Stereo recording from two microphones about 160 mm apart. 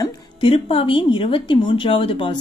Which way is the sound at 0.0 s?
35° left (ahead or behind).